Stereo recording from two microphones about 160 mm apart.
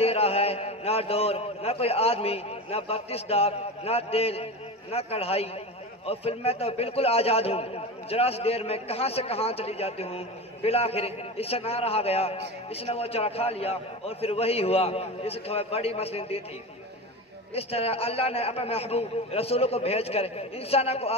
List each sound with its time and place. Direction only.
0.0 s a man's voice: 40° left (ahead or behind)
17.6 s a man's voice: 40° left (ahead or behind)